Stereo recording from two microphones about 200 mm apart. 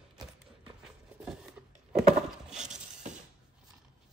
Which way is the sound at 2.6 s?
35° right (ahead or behind).